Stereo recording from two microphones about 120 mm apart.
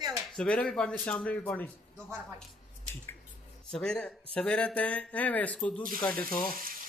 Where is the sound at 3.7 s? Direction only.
5° left (ahead or behind).